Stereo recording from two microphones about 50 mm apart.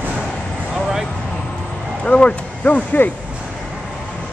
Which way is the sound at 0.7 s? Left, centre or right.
Centre.